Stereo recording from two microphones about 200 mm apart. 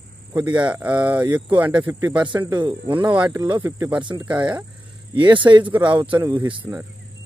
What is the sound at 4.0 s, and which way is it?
Speech, 25° right (ahead or behind).